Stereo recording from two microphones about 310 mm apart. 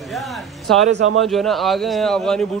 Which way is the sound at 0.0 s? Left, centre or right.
Centre.